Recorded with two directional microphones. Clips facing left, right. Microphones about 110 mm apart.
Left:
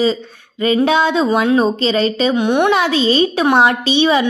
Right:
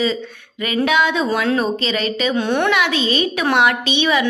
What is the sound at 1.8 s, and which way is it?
Speech, 35° left (ahead or behind).